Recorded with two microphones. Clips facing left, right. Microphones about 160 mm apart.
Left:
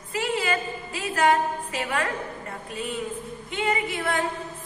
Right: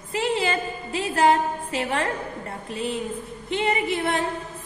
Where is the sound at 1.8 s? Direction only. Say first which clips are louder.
Right 2 dB; 35° right (ahead or behind).